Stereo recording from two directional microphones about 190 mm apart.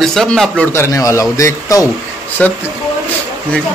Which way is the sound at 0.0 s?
Centre (ahead or behind).